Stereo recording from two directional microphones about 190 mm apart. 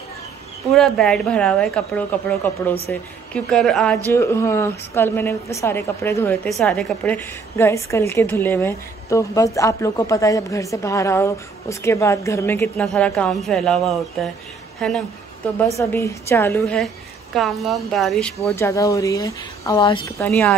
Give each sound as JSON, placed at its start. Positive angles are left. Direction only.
{"t": 0.7, "sound": "a woman's voice", "side_deg": 0}
{"t": 4.1, "sound": "a woman's voice", "side_deg": 15}
{"t": 15.8, "sound": "a woman's voice", "side_deg": 15}
{"t": 18.6, "sound": "a woman's voice", "side_deg": 15}